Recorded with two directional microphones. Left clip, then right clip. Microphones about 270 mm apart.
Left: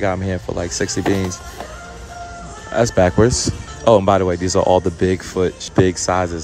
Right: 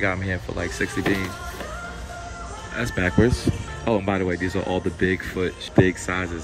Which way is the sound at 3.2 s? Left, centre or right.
Right.